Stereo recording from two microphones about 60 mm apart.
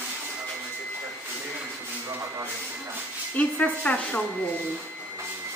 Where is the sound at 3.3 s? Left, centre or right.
Left.